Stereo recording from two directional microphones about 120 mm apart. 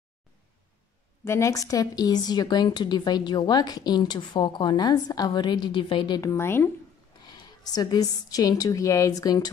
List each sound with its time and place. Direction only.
1.2 s a woman's voice: 25° left (ahead or behind); by 6.2 s 40° left (ahead or behind)
6.2 s speech: 20° left (ahead or behind)
7.2 s a woman's voice: 35° left (ahead or behind)